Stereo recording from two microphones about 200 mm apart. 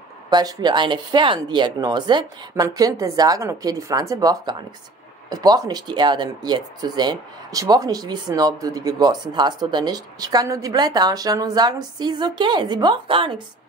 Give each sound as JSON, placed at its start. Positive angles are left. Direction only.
{"t": 0.3, "sound": "speech", "side_deg": -20}